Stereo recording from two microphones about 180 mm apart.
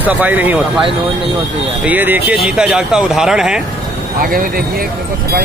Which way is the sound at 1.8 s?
10° right (ahead or behind).